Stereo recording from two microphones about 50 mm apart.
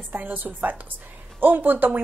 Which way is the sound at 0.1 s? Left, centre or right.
Right.